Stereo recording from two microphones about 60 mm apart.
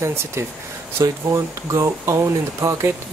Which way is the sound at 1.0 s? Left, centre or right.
Right.